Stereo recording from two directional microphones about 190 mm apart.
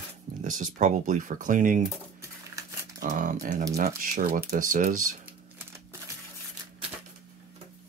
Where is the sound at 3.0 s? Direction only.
45° right (ahead or behind).